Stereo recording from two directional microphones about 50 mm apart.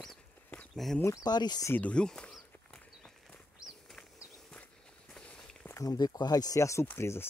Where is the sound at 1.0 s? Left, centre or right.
Left.